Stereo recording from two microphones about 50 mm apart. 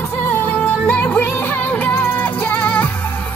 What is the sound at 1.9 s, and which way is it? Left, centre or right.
Music, left.